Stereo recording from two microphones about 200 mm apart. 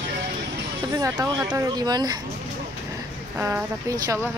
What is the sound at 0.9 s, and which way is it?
Speech, 15° right (ahead or behind).